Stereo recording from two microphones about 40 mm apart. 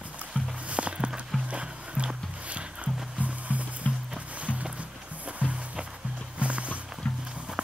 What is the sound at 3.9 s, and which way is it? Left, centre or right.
Music, left.